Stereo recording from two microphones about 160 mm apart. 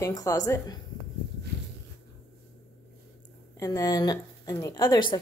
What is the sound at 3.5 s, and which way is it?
A woman's voice, 20° left (ahead or behind).